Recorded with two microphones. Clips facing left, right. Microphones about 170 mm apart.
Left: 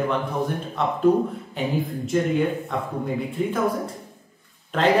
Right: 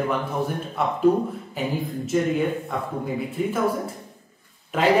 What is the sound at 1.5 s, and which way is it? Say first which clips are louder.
A man's voice: left 2 dB; centre (ahead or behind).